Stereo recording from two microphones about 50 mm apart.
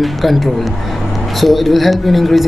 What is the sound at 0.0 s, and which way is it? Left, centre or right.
Speech, centre.